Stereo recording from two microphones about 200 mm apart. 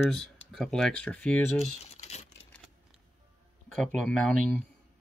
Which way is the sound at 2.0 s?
35° left (ahead or behind).